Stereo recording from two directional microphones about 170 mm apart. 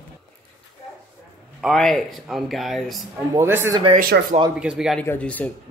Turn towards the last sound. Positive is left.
turn(degrees=10)  # may be behind; listen again after turning